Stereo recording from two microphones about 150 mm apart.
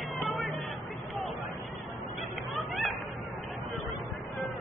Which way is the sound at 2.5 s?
Centre (ahead or behind).